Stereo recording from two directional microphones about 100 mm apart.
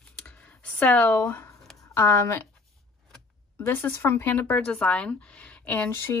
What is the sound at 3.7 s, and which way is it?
Speech, 25° left (ahead or behind).